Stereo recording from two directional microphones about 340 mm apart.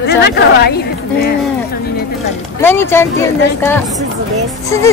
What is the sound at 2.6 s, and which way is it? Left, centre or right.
Speech, centre.